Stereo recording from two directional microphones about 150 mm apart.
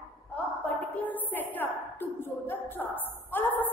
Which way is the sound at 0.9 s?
10° left (ahead or behind).